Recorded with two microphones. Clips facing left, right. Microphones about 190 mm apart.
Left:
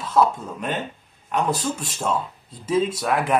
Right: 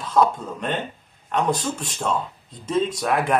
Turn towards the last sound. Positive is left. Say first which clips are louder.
# even
turn(degrees=0)  # may be behind; listen again after turning